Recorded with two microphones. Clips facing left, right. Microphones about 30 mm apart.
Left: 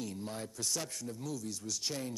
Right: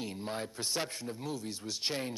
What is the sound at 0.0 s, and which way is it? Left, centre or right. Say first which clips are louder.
A man's voice: right 3 dB; right.